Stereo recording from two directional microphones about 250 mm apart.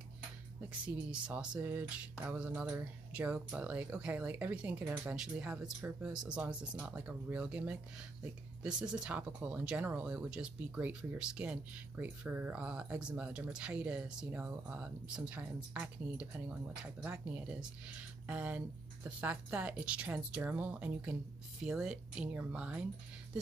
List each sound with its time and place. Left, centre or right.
0.8 s speech: centre